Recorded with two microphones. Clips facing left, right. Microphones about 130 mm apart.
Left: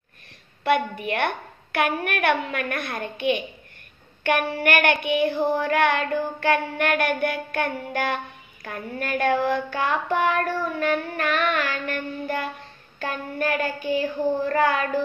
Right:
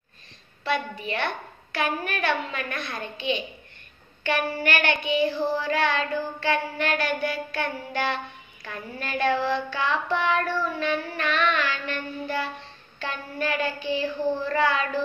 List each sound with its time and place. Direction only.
0.7 s child singing: 60° left (ahead or behind)
4.2 s a woman's voice: 55° left (ahead or behind)
4.6 s child singing: 55° left (ahead or behind)